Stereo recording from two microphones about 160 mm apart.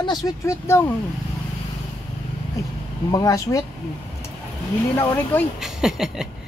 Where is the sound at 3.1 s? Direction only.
20° left (ahead or behind).